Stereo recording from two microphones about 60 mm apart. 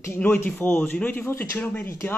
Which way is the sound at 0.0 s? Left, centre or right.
Left.